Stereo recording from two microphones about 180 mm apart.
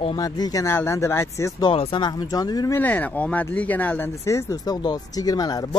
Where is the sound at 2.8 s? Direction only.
10° left (ahead or behind).